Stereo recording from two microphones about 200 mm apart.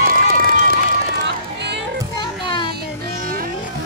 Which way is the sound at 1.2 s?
60° right (ahead or behind).